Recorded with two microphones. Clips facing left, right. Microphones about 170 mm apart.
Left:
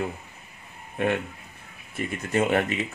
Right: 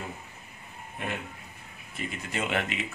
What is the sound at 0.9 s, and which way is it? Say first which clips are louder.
Speech: left 10 dB; 65° left (ahead or behind).